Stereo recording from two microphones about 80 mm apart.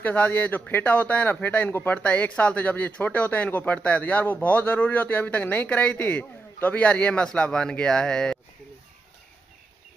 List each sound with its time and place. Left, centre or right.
0.0 s a man's voice: centre